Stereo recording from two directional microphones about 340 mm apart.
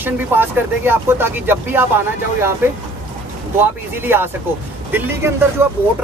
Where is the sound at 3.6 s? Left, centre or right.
Centre.